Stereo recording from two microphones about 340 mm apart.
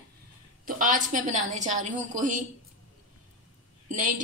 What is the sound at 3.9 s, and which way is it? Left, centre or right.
Speech, right.